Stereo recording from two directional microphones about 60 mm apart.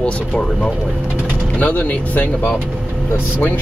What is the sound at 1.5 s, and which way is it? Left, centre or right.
Speech, left.